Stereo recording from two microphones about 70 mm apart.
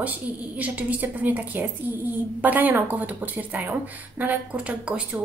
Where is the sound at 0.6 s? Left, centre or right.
Right.